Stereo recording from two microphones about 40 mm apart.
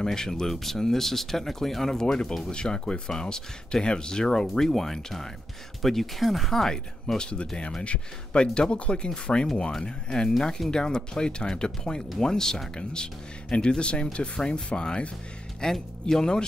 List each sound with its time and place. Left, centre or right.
0.0 s speech: centre
2.5 s speech: left
7.2 s speech: left
15.7 s speech: centre